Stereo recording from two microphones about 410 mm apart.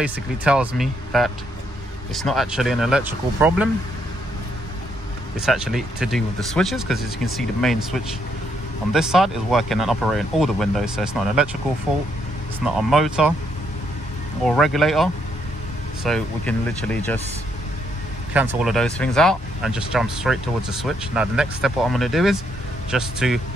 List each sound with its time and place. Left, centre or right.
0.0 s speech: centre
5.4 s speech: centre
12.6 s speech: centre
14.4 s speech: centre
18.6 s speech: centre